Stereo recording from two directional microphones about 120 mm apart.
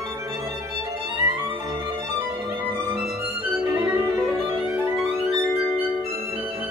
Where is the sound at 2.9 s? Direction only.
10° right (ahead or behind).